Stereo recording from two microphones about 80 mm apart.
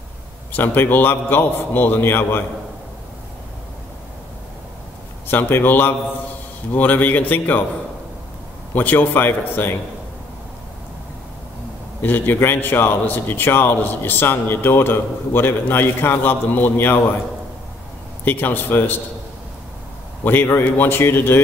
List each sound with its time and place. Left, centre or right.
0.5 s a man's voice: left
5.3 s a man's voice: left
8.7 s a man's voice: left
12.0 s a man's voice: left
18.2 s a man's voice: left
20.2 s a man's voice: left